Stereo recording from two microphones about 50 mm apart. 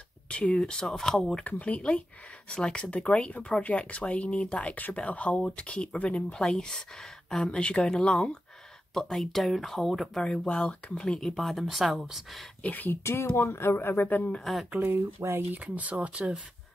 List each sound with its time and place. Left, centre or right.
0.3 s a sound: left
0.6 s speech: centre
1.8 s speech: left
6.3 s speech: centre
10.2 s speech: centre
11.1 s speech: centre
12.6 s speech: left
12.9 s speech: left
14.4 s speech: centre
15.2 s speech: right
15.5 s speech: right